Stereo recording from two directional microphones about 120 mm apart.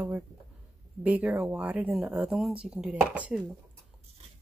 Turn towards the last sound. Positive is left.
turn(degrees=-10)  # may be behind; listen again after turning